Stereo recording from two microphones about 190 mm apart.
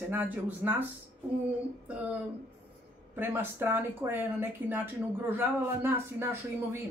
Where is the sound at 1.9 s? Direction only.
10° right (ahead or behind).